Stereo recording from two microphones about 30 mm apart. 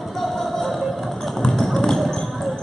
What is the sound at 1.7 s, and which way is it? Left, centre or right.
Basketball bounce, centre.